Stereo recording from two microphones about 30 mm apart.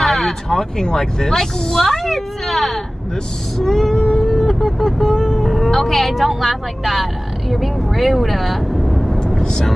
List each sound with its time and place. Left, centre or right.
0.0 s a sound: centre
0.5 s speech: centre
3.9 s cat: left
4.2 s vehicle: centre
4.8 s speech: centre
9.4 s vehicle: left